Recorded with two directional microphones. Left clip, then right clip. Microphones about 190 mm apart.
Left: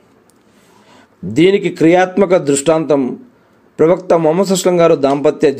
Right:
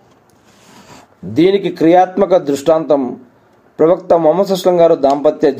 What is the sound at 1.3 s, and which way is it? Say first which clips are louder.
A man's voice: left 1 dB; 35° left (ahead or behind).